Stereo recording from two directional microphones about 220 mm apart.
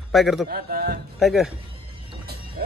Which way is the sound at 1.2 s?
Centre (ahead or behind).